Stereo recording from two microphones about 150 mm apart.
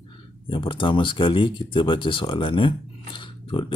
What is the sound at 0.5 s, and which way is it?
A man's voice, 35° left (ahead or behind).